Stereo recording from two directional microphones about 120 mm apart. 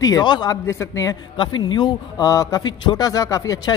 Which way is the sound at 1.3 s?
40° left (ahead or behind).